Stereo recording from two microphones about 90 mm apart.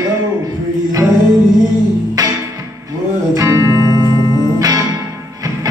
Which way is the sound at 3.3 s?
40° right (ahead or behind).